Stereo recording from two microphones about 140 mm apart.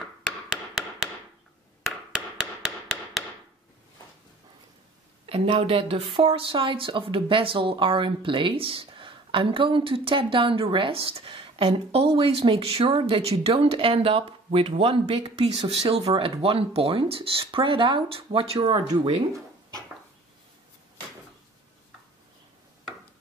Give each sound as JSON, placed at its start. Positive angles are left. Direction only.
{"t": 0.7, "sound": "chop", "side_deg": 0}
{"t": 5.2, "sound": "a woman's voice", "side_deg": -45}